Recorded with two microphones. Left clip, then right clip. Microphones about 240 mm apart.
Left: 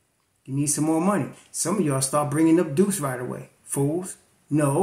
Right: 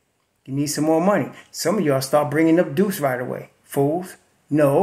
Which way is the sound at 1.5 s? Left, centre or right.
Centre.